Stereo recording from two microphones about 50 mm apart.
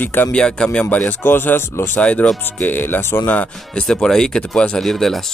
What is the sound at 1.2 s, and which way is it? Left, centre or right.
Speech, left.